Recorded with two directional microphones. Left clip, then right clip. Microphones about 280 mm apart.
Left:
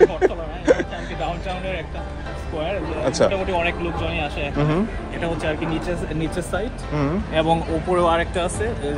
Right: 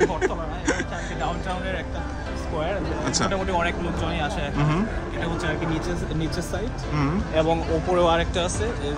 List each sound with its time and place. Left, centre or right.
0.0 s a sound: centre
3.1 s speech: centre
7.3 s speech: left